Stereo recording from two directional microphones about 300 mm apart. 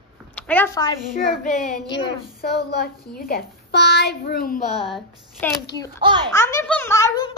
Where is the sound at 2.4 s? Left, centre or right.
Left.